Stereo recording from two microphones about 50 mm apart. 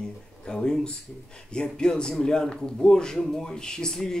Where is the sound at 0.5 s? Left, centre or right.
Centre.